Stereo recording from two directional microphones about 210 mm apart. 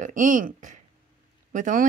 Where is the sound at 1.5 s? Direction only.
35° right (ahead or behind).